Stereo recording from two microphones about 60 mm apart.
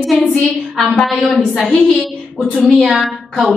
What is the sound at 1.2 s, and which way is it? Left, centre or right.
A woman's voice, centre.